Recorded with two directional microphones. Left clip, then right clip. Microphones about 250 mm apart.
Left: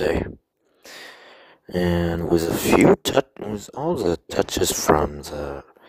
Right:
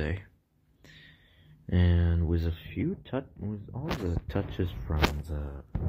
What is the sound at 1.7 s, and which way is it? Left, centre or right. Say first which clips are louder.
Speech: left 11 dB; left.